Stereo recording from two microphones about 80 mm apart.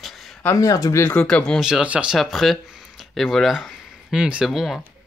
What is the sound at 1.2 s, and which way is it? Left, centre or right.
Speech, centre.